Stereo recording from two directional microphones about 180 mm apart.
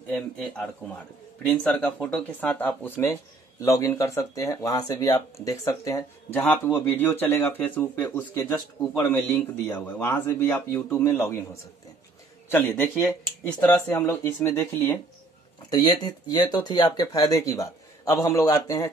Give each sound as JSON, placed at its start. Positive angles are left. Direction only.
{"t": 0.1, "sound": "speech", "side_deg": 5}
{"t": 12.4, "sound": "speech", "side_deg": 10}
{"t": 15.7, "sound": "speech", "side_deg": 25}